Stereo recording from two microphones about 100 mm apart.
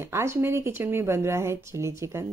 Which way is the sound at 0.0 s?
25° right (ahead or behind).